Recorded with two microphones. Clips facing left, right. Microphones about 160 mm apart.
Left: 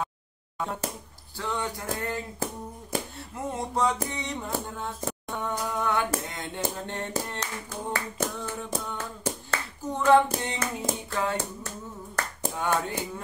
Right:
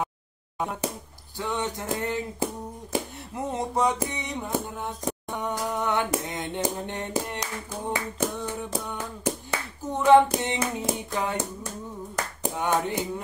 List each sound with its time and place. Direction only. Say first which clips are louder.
1.4 s music: right 2 dB; 20° right (ahead or behind)
7.9 s a sound: right 3 dB; 15° right (ahead or behind)
8.8 s hands: right 3 dB; 15° right (ahead or behind)
12.2 s clapping: right 1 dB; 15° right (ahead or behind)